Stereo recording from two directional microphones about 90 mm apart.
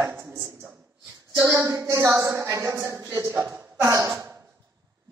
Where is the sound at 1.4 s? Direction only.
35° right (ahead or behind).